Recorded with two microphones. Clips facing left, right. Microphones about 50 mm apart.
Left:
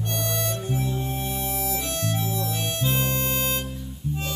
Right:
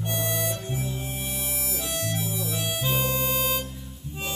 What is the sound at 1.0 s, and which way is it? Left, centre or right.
Music, centre.